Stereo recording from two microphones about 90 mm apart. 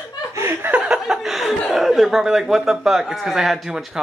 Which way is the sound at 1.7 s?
5° right (ahead or behind).